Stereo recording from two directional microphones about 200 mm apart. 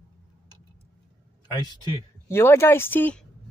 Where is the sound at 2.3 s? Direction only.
10° left (ahead or behind).